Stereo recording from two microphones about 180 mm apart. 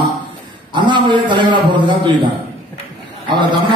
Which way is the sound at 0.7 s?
25° right (ahead or behind).